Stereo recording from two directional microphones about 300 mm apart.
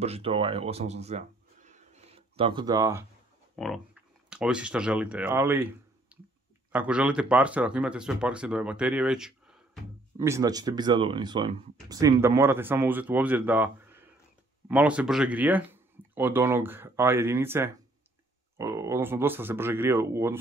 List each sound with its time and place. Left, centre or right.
0.0 s speech: centre
3.5 s speech: centre